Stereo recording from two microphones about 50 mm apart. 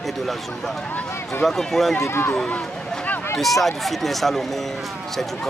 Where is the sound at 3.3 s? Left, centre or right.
Centre.